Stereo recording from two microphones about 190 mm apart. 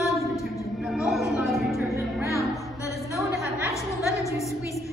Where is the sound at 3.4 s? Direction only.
15° left (ahead or behind).